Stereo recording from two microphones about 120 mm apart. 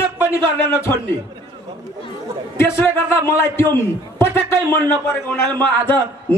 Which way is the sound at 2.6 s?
20° left (ahead or behind).